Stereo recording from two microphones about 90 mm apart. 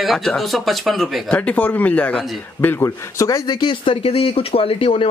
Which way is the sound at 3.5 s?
60° left (ahead or behind).